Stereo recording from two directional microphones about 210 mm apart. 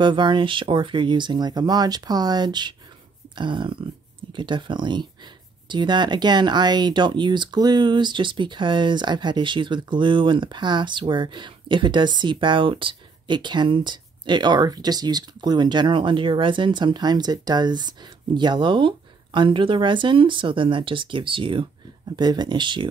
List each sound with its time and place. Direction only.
0.0 s speech: 20° right (ahead or behind)